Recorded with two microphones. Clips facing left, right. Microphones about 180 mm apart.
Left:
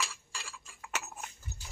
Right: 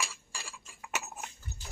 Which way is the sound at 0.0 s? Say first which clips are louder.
Even; 15° right (ahead or behind).